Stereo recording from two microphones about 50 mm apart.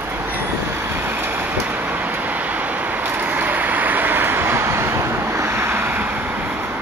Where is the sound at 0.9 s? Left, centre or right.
Right.